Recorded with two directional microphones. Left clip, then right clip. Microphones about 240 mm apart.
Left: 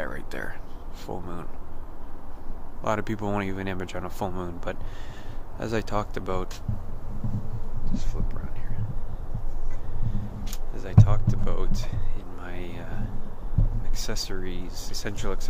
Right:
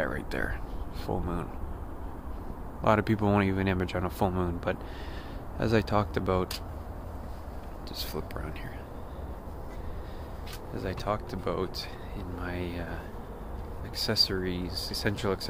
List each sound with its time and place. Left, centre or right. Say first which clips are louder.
0.0 s speech: right 2 dB; centre
2.8 s speech: right 3 dB; centre
7.9 s speech: right 2 dB; right
10.8 s speech: left 2 dB; centre